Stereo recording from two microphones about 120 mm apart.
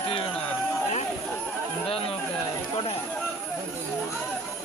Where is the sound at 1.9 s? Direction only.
50° left (ahead or behind).